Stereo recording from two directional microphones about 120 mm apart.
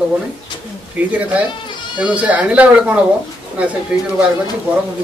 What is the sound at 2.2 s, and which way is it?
Speech, 10° right (ahead or behind).